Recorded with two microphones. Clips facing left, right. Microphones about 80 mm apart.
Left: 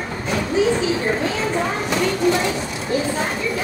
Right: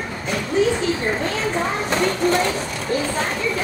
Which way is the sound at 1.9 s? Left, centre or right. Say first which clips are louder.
Even; right.